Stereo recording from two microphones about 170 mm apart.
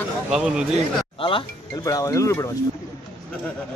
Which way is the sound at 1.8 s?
20° left (ahead or behind).